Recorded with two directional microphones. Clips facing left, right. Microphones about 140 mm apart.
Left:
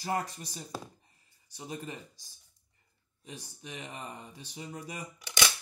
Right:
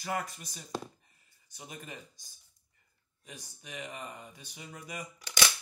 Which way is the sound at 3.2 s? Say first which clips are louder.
Left 4 dB; 35° left (ahead or behind).